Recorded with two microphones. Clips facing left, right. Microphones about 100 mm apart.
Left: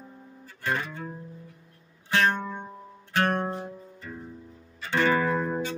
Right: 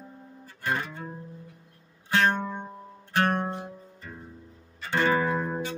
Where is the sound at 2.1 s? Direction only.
25° right (ahead or behind).